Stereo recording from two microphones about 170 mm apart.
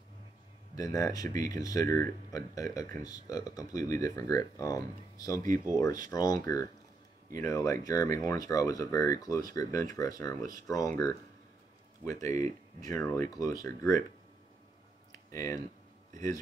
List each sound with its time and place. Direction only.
0.7 s speech: 20° left (ahead or behind)
15.3 s speech: 20° left (ahead or behind)